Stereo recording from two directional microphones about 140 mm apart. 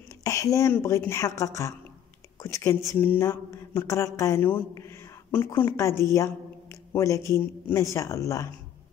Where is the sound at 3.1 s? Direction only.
15° left (ahead or behind).